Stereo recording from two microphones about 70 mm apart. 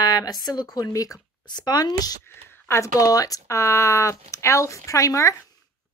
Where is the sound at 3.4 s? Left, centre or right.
Left.